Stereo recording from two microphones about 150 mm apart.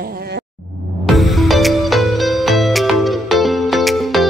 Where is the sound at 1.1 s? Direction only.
Centre (ahead or behind).